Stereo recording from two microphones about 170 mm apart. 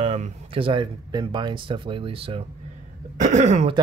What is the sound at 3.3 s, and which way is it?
Speech, 45° right (ahead or behind).